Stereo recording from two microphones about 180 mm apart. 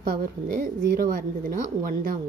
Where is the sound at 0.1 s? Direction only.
55° right (ahead or behind).